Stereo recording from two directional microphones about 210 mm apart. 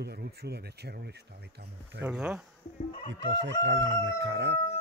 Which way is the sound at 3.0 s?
55° right (ahead or behind).